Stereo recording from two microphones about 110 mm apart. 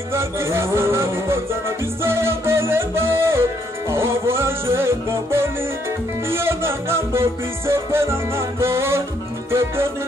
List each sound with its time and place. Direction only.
0.1 s music: 25° right (ahead or behind)